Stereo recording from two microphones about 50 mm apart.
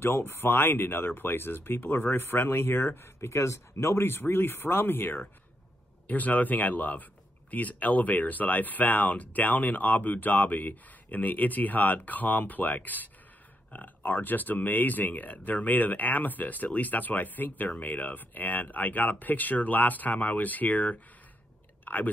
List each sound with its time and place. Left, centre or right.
0.0 s speech: left
6.0 s speech: left